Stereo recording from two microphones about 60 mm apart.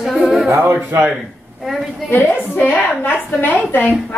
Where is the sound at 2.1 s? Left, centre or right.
Left.